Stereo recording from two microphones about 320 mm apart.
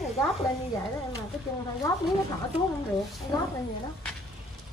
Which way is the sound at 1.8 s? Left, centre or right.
Centre.